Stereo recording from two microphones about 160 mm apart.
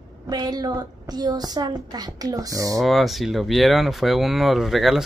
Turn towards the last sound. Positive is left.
turn(degrees=0)  # may be behind; listen again after turning